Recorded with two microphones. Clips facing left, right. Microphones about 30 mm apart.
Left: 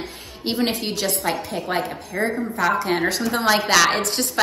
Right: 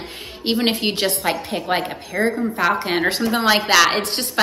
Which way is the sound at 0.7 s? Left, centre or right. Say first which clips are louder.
Right 4 dB; right.